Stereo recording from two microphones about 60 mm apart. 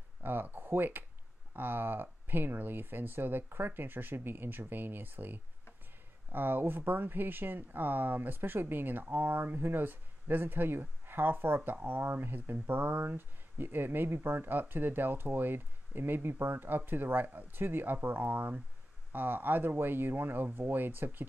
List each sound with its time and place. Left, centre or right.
0.2 s speech: right